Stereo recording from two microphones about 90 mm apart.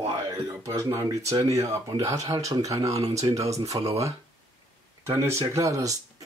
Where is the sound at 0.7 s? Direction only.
35° right (ahead or behind).